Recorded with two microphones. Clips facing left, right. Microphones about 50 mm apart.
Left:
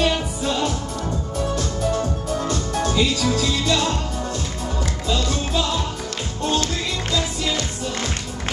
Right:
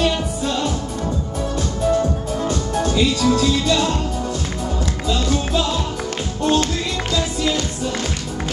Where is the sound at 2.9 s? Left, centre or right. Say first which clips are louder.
Right 4 dB; centre.